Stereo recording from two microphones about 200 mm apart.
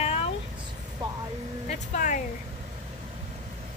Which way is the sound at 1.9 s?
40° left (ahead or behind).